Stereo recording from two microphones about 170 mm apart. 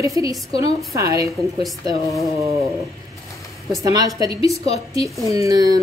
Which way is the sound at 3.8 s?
20° right (ahead or behind).